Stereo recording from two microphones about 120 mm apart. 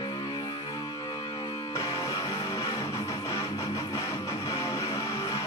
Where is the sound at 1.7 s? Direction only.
25° left (ahead or behind).